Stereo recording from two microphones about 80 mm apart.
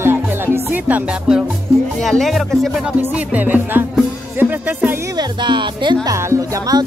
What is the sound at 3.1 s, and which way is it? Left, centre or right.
Speech, centre.